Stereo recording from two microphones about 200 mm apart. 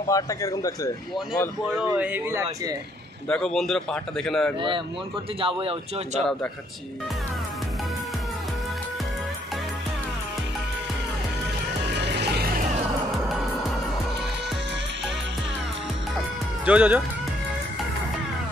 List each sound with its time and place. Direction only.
0.1 s speech: 15° left (ahead or behind)
1.9 s a man's voice: 10° right (ahead or behind)
3.3 s speech: 5° left (ahead or behind)
4.6 s speech: 25° right (ahead or behind)
11.9 s music: 60° right (ahead or behind)
13.1 s music: centre (ahead or behind)
16.6 s a man's voice: 10° right (ahead or behind)